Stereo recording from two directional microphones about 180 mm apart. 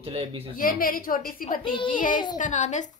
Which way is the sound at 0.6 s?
50° left (ahead or behind).